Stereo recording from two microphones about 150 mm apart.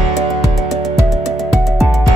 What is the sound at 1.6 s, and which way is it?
Music, centre (ahead or behind).